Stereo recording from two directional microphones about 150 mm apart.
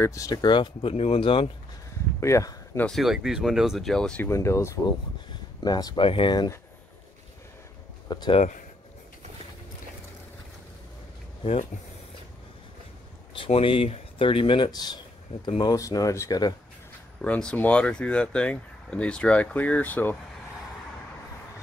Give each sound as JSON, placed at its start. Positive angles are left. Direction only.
{"t": 0.0, "sound": "speech", "side_deg": 20}
{"t": 2.1, "sound": "speech", "side_deg": 20}
{"t": 2.9, "sound": "speech", "side_deg": 0}
{"t": 4.3, "sound": "speech", "side_deg": 20}
{"t": 5.3, "sound": "a sound", "side_deg": 25}
{"t": 6.0, "sound": "speech", "side_deg": 35}
{"t": 8.1, "sound": "speech", "side_deg": 30}
{"t": 13.3, "sound": "speech", "side_deg": 35}
{"t": 17.2, "sound": "speech", "side_deg": 5}